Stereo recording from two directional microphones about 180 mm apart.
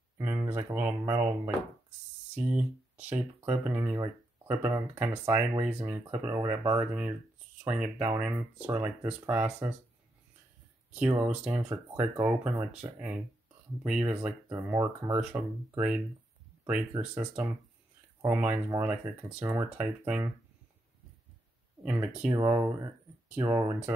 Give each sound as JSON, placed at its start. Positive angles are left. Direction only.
{"t": 0.2, "sound": "speech", "side_deg": -10}
{"t": 10.9, "sound": "speech", "side_deg": -10}
{"t": 14.2, "sound": "speech", "side_deg": -15}
{"t": 17.0, "sound": "speech", "side_deg": -20}
{"t": 18.2, "sound": "speech", "side_deg": -10}
{"t": 21.8, "sound": "speech", "side_deg": -10}